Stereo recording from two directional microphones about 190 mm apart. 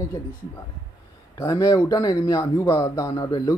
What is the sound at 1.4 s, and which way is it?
Speech, 15° left (ahead or behind).